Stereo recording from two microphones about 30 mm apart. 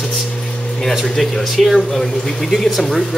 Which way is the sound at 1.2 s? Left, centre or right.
Centre.